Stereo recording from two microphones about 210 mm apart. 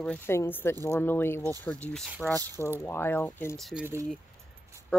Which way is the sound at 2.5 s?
15° right (ahead or behind).